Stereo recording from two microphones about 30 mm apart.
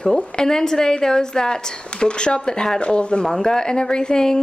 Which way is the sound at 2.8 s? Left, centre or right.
Left.